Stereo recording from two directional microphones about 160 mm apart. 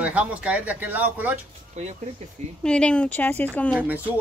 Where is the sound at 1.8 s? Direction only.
45° right (ahead or behind).